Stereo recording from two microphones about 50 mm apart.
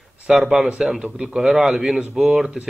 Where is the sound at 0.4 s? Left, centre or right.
Centre.